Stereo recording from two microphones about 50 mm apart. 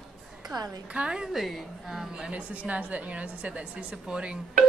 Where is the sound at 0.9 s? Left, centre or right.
Centre.